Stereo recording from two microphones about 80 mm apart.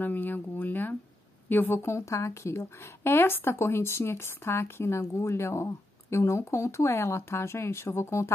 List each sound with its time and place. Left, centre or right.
0.0 s a woman's voice: left